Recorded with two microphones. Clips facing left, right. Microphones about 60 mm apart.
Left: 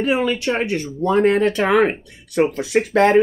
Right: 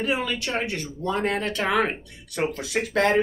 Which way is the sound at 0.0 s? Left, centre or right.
Left.